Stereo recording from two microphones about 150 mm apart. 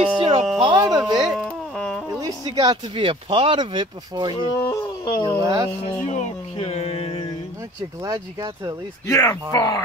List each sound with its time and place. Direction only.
0.2 s a sound: 35° right (ahead or behind)
1.1 s a sound: centre (ahead or behind)
2.1 s speech: 25° right (ahead or behind)
4.3 s speech: 35° left (ahead or behind)
4.6 s wild animals: 30° left (ahead or behind)
5.2 s speech: 25° right (ahead or behind)
6.0 s speech: 45° left (ahead or behind)
8.0 s speech: 25° right (ahead or behind)
9.0 s speech: 20° left (ahead or behind)